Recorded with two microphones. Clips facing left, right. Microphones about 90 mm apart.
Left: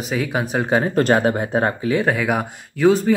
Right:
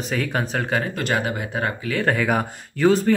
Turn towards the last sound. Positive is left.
turn(degrees=0)  # may be behind; listen again after turning